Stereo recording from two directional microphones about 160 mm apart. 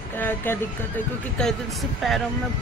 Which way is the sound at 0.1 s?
15° left (ahead or behind).